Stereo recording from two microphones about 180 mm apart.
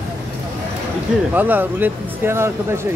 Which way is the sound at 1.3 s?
10° right (ahead or behind).